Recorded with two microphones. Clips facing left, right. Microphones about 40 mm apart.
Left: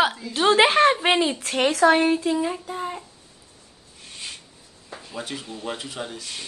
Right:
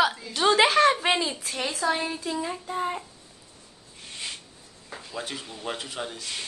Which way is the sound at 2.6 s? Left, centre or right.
Centre.